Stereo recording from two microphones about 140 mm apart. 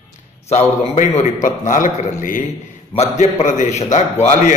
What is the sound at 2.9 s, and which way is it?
A man's voice, 50° left (ahead or behind).